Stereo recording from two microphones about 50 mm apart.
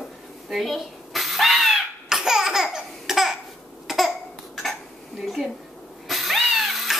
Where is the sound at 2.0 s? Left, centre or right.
Centre.